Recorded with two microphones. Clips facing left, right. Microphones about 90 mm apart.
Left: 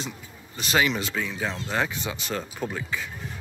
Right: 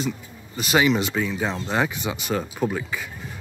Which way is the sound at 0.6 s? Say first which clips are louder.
Right 4 dB; 5° right (ahead or behind).